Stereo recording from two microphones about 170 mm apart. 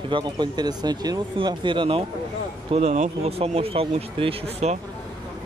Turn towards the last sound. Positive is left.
turn(degrees=-40)  # may be behind; listen again after turning